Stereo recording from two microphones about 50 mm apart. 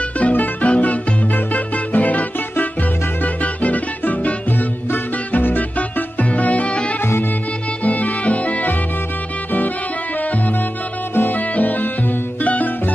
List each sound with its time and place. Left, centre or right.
0.2 s music: left
7.0 s music: left
7.8 s music: left
11.1 s music: left